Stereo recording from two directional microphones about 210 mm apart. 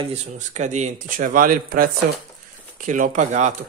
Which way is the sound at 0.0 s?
30° right (ahead or behind).